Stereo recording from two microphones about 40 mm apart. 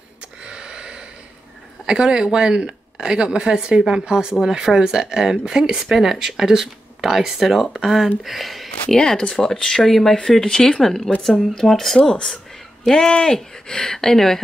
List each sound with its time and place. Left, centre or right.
0.4 s a sound: right
1.9 s a woman's voice: right; by 8.6 s centre
8.9 s speech: centre